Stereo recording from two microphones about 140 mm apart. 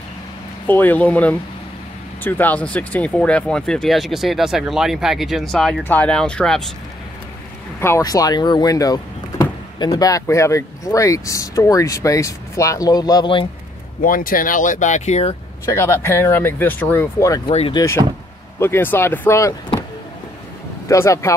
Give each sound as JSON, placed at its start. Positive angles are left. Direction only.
{"t": 0.7, "sound": "speech", "side_deg": 15}
{"t": 7.8, "sound": "speech", "side_deg": 20}
{"t": 14.0, "sound": "speech", "side_deg": 85}
{"t": 15.6, "sound": "speech", "side_deg": 20}
{"t": 17.5, "sound": "speech", "side_deg": 45}
{"t": 18.6, "sound": "speech", "side_deg": 15}
{"t": 20.9, "sound": "speech", "side_deg": 20}